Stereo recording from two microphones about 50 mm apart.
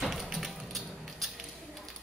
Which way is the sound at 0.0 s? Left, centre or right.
Centre.